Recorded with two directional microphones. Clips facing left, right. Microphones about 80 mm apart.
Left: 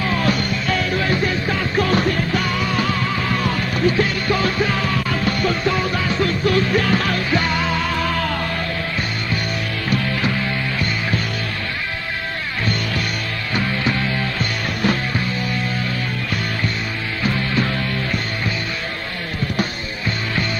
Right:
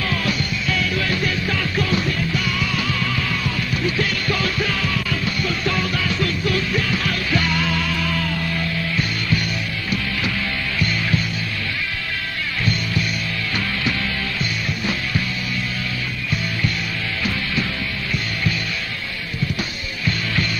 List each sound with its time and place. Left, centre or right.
0.1 s music: left
1.9 s music: left
5.2 s music: left
5.7 s music: left
7.2 s music: left